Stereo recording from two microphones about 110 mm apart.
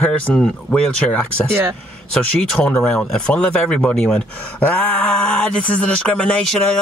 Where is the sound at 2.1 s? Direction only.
5° left (ahead or behind).